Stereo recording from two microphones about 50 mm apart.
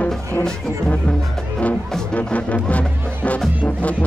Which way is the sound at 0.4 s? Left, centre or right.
Left.